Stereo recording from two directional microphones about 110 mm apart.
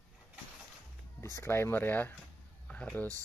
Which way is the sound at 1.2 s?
25° left (ahead or behind).